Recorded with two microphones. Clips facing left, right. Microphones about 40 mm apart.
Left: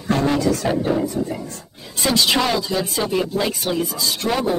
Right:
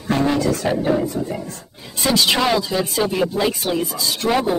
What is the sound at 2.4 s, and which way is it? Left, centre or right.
Speech, centre.